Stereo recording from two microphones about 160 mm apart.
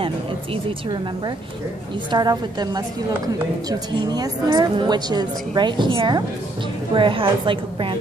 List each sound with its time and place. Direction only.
0.7 s a woman's voice: 25° right (ahead or behind)